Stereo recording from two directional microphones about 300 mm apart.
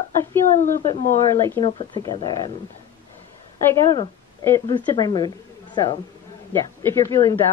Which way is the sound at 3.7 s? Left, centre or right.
Centre.